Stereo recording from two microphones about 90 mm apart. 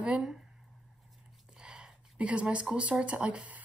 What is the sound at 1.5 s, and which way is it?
Speech, 10° right (ahead or behind).